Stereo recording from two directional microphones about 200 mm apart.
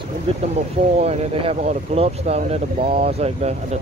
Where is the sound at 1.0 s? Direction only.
30° right (ahead or behind).